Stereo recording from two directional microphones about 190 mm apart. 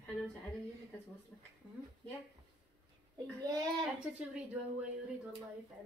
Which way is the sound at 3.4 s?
20° right (ahead or behind).